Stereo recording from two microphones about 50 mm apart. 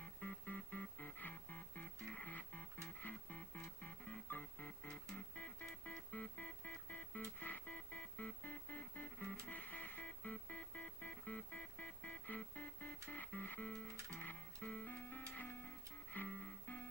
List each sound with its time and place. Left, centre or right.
0.2 s music: left